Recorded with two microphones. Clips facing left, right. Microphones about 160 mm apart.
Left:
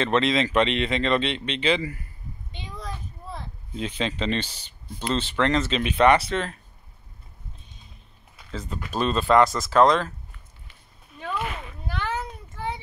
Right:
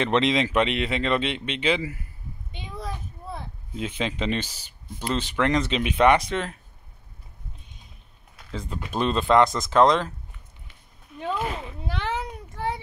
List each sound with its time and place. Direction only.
0.0 s speech: 15° right (ahead or behind)
3.3 s speech: 5° right (ahead or behind)
8.5 s speech: 15° right (ahead or behind)
11.3 s a sound: 30° right (ahead or behind)